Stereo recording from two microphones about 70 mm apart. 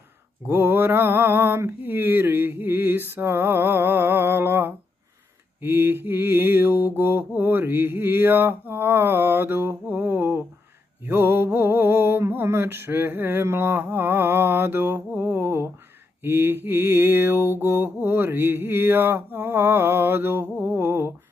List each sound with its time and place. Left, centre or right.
0.5 s mantra: right